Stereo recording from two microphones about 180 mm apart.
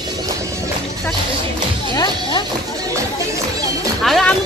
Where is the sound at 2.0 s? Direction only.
25° left (ahead or behind).